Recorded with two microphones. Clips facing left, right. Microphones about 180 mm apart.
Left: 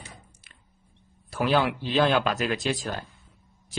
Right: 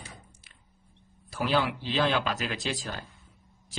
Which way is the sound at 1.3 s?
55° left (ahead or behind).